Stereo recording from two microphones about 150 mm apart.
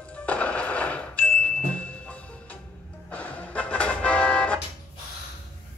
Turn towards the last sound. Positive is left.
turn(degrees=5)  # may be behind; listen again after turning